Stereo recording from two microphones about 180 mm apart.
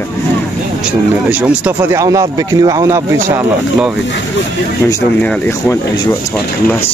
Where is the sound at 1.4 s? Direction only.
15° right (ahead or behind).